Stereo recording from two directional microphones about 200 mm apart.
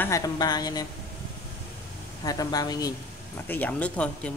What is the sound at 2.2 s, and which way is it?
Speech, 20° left (ahead or behind).